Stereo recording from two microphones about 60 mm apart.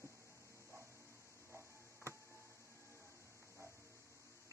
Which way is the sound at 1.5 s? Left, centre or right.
Right.